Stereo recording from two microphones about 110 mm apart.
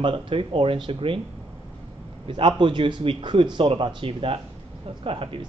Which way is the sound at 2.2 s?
50° right (ahead or behind).